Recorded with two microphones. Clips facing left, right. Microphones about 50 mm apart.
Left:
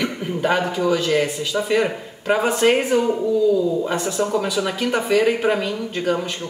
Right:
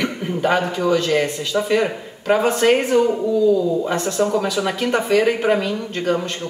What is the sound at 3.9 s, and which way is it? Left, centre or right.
A man's voice, centre.